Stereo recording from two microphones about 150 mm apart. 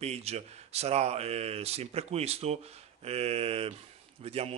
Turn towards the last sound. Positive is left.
turn(degrees=-40)  # may be behind; listen again after turning